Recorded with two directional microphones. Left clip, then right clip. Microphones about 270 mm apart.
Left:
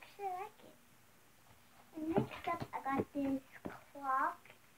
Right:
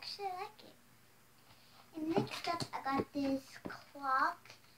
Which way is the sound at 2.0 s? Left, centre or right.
Centre.